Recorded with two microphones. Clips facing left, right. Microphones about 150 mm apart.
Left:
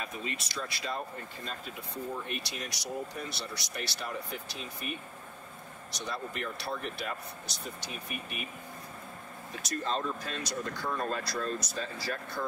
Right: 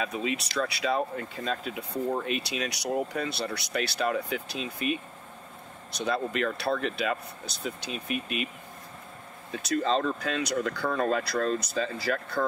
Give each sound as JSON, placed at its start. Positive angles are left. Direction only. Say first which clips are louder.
{"t": 0.0, "sound": "speech", "louder": "right 8 dB", "side_deg": -90}
{"t": 6.0, "sound": "speech", "louder": "right 9 dB", "side_deg": -80}
{"t": 9.8, "sound": "speech", "louder": "right 5 dB", "side_deg": -80}
{"t": 12.4, "sound": "speech", "louder": "right 7 dB", "side_deg": -65}